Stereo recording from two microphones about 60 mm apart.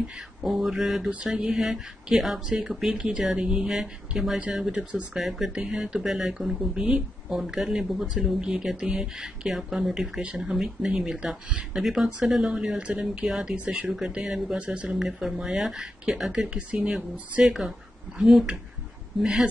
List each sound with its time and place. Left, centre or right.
0.4 s mantra: centre
1.3 s speech: centre
3.7 s mantra: centre
4.5 s speech: centre
5.2 s mantra: centre
5.5 s speech: centre
5.8 s speech: centre
11.7 s mantra: centre
12.2 s speech: centre
13.6 s speech: right
13.9 s speech: centre